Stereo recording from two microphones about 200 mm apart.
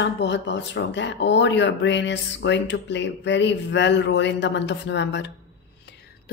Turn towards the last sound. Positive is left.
turn(degrees=60)  # may be behind; listen again after turning